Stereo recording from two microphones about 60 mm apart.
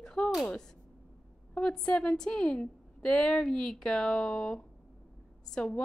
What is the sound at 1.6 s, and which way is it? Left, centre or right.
A woman's voice, centre.